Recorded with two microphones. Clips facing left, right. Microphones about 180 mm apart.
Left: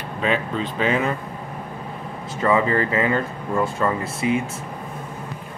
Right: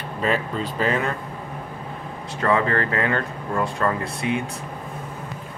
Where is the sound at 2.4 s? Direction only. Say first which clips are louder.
Left 2 dB; 5° left (ahead or behind).